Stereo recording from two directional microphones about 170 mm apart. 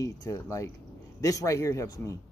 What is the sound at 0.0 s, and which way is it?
Speech, 20° left (ahead or behind).